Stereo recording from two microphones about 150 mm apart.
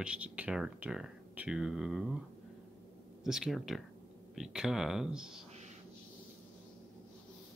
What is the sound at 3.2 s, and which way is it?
Speech, 5° right (ahead or behind).